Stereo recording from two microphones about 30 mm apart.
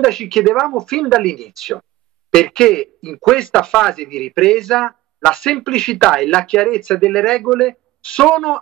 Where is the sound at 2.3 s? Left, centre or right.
Left.